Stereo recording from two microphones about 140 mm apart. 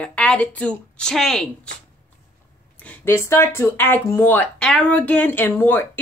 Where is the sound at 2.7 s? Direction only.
10° left (ahead or behind).